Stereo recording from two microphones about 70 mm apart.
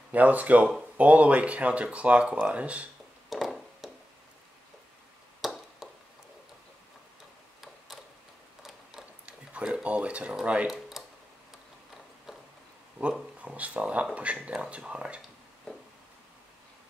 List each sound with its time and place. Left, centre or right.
0.1 s speech: right
3.3 s a sound: centre
5.4 s chop: centre
9.2 s a sound: centre
10.4 s speech: centre
10.7 s tick-tock: centre
13.0 s speech: centre